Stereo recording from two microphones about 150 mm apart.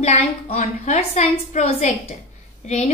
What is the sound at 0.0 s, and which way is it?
A woman's voice, 45° left (ahead or behind).